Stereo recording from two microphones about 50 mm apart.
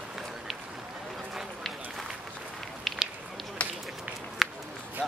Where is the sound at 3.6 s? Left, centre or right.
Left.